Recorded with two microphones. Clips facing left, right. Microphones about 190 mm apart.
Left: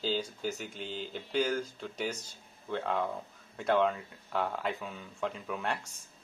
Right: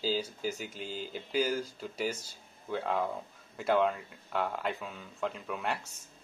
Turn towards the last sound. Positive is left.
turn(degrees=-5)  # may be behind; listen again after turning